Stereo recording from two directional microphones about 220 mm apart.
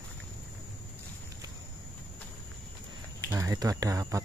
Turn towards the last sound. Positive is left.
turn(degrees=-15)  # may be behind; listen again after turning